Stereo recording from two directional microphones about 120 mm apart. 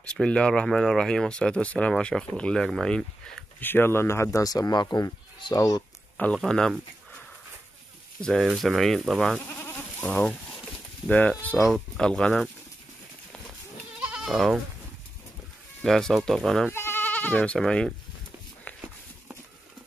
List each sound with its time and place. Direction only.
0.0 s speech: 10° left (ahead or behind)
3.6 s speech: 20° left (ahead or behind)
6.1 s speech: 5° left (ahead or behind)
8.2 s speech: centre (ahead or behind)
13.9 s goat: 5° right (ahead or behind)
15.8 s speech: centre (ahead or behind)
16.7 s speech: 20° left (ahead or behind)